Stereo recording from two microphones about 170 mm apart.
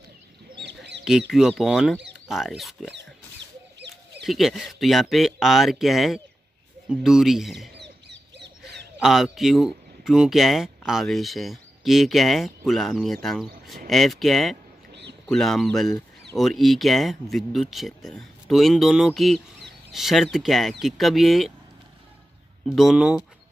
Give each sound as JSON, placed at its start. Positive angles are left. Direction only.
{"t": 0.6, "sound": "fowl", "side_deg": -90}
{"t": 1.3, "sound": "speech", "side_deg": 0}
{"t": 4.2, "sound": "speech", "side_deg": 0}
{"t": 7.8, "sound": "bird", "side_deg": -90}
{"t": 9.0, "sound": "speech", "side_deg": 0}
{"t": 22.7, "sound": "speech", "side_deg": 0}